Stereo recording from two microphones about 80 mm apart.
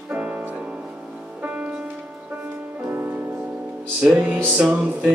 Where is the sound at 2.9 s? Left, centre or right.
Right.